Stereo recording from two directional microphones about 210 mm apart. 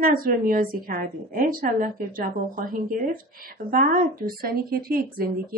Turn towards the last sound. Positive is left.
turn(degrees=-45)  # may be behind; listen again after turning